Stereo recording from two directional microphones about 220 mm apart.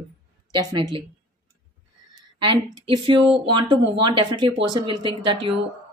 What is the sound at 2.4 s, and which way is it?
Speech, 25° right (ahead or behind).